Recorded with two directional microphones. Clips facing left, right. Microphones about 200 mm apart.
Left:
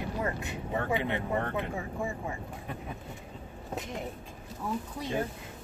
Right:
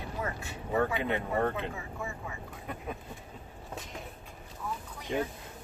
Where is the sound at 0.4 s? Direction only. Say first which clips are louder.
Right 3 dB; 20° left (ahead or behind).